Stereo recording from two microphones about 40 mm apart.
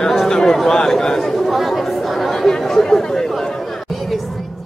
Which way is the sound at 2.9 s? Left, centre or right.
Centre.